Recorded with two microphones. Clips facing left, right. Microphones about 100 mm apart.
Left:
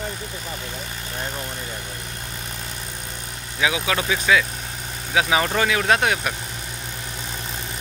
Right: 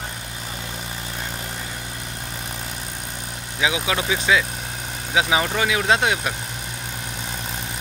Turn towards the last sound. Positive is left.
turn(degrees=-20)  # may be behind; listen again after turning